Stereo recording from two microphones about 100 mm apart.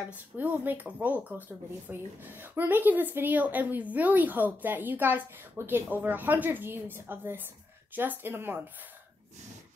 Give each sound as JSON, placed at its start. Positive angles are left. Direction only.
{"t": 0.4, "sound": "speech", "side_deg": -15}